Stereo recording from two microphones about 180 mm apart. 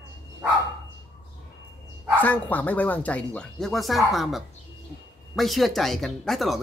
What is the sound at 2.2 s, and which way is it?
A woman's voice, 10° left (ahead or behind).